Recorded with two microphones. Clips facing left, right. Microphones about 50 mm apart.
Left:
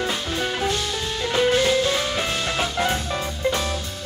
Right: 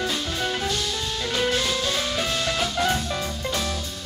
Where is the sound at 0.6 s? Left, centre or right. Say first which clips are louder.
Left 3 dB; left.